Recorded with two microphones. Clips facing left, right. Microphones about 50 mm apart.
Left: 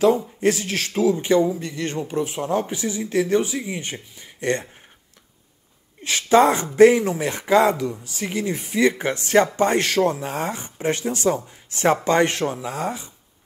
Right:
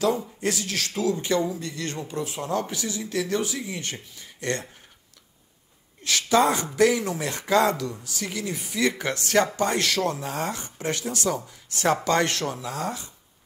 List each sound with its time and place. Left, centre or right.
0.4 s speech: left
6.0 s speech: left